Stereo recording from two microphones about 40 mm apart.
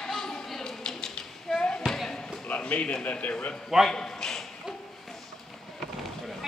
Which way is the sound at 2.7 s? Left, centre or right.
Left.